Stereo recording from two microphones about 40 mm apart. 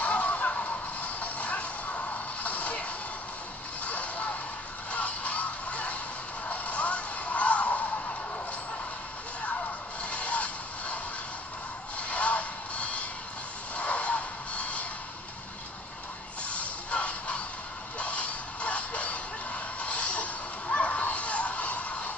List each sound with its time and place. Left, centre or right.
0.0 s music: left
6.5 s a sound: left
10.0 s music: left
12.0 s music: left
16.4 s music: left